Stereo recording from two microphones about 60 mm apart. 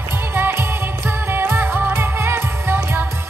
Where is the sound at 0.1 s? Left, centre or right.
Right.